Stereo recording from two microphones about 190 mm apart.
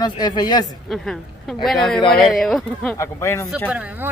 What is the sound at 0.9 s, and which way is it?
Speech, centre (ahead or behind).